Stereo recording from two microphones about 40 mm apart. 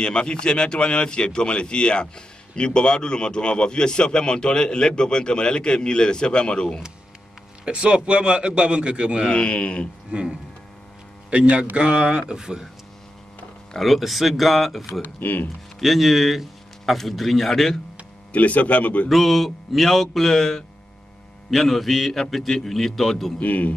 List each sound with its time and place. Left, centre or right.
0.0 s speech: left
7.6 s a man's voice: right
9.3 s speech: left
10.1 s a man's voice: right
13.7 s a man's voice: centre
15.0 s speech: left
15.8 s a man's voice: centre
18.3 s speech: left
19.0 s a man's voice: centre
23.4 s speech: left